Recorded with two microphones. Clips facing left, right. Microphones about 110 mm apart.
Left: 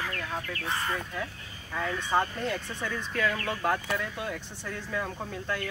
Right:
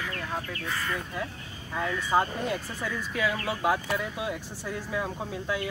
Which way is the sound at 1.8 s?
10° right (ahead or behind).